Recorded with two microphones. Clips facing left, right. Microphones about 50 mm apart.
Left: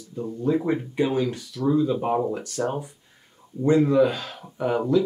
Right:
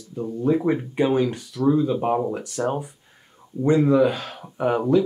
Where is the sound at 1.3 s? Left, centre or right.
Centre.